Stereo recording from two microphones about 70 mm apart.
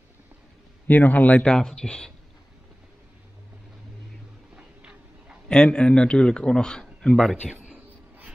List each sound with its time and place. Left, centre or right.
0.8 s a man's voice: left
1.5 s a man's voice: centre
4.6 s a sound: centre
5.5 s a man's voice: centre